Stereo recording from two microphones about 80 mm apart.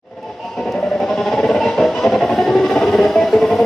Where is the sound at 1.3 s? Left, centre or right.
Centre.